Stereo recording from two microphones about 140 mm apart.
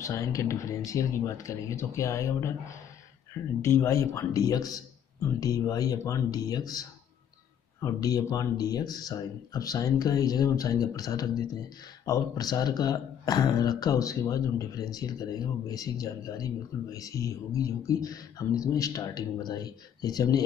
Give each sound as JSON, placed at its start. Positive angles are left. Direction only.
{"t": 0.0, "sound": "speech", "side_deg": 25}
{"t": 3.6, "sound": "speech", "side_deg": 20}